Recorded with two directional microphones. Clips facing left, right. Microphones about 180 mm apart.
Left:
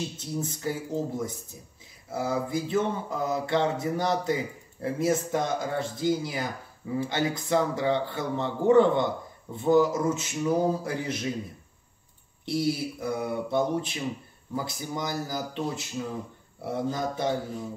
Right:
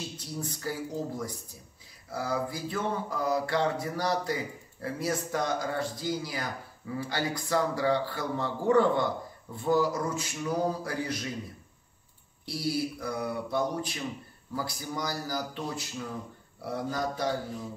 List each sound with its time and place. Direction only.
0.2 s a man's voice: 25° left (ahead or behind)
12.4 s a man's voice: 25° left (ahead or behind)